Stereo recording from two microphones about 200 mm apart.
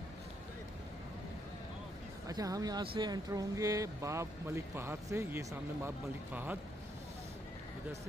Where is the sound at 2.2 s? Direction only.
15° right (ahead or behind).